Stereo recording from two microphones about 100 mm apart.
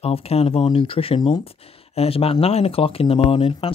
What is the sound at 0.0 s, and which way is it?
Speech, 85° left.